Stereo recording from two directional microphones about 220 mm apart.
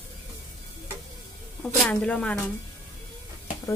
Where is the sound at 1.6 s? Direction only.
5° left (ahead or behind).